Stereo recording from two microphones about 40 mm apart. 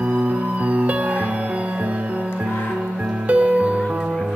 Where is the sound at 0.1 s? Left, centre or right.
Right.